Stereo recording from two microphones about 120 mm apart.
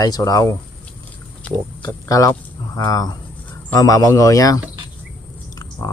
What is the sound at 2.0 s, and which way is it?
A man's voice, 30° left (ahead or behind).